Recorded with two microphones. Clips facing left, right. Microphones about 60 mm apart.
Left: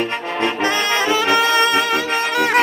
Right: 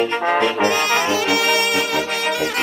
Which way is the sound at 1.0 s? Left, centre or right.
Left.